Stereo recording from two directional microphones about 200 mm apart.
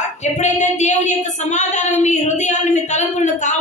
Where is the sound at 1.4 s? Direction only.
35° left (ahead or behind).